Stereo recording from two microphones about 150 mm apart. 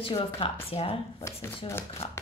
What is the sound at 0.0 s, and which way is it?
Speech, 35° left (ahead or behind).